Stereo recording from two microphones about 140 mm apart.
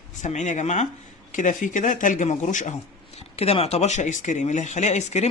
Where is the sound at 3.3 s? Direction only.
45° left (ahead or behind).